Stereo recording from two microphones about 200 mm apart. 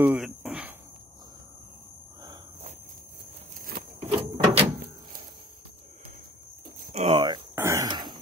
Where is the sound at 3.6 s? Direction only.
45° right (ahead or behind).